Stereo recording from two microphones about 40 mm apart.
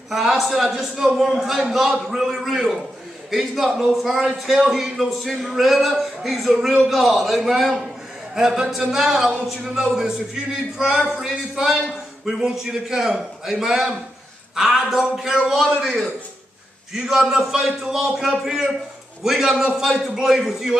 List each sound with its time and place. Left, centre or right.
0.1 s a man's voice: centre
16.9 s a man's voice: centre